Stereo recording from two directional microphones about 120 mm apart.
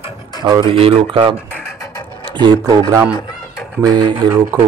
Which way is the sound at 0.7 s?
50° right (ahead or behind).